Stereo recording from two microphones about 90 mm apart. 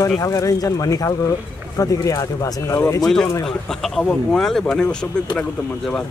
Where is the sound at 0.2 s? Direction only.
40° left (ahead or behind).